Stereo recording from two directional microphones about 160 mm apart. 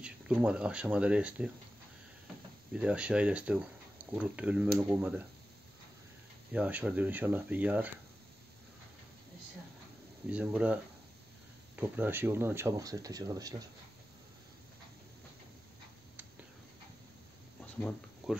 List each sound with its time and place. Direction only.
0.0 s speech: 5° right (ahead or behind)
2.7 s speech: 5° right (ahead or behind)
6.5 s speech: 10° right (ahead or behind)
10.2 s speech: 10° right (ahead or behind); by 13.7 s 25° right (ahead or behind)
18.2 s speech: centre (ahead or behind)